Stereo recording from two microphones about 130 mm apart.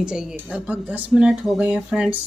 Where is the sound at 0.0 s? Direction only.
5° right (ahead or behind).